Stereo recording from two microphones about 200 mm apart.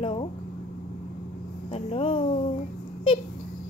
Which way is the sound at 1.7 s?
30° left (ahead or behind).